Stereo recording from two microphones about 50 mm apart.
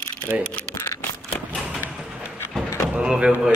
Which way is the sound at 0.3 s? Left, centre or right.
Right.